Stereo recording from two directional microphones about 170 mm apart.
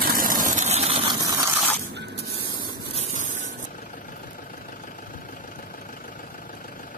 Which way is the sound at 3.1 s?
45° left (ahead or behind).